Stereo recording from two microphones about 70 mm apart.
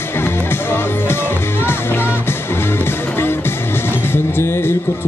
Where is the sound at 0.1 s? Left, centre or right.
Left.